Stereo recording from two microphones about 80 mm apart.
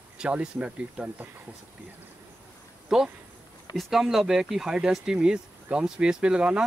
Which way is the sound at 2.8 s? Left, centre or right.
Centre.